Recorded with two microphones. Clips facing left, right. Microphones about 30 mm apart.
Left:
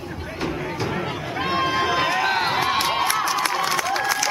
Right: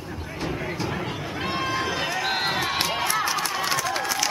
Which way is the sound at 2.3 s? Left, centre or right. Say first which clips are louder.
Left 4 dB; centre.